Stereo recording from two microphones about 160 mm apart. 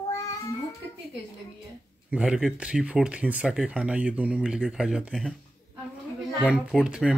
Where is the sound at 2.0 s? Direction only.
5° right (ahead or behind).